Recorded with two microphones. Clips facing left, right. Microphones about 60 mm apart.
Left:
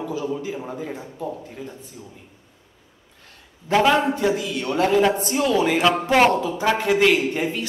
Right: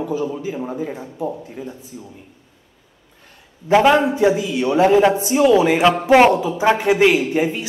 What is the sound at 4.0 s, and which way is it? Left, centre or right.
A man's voice, centre.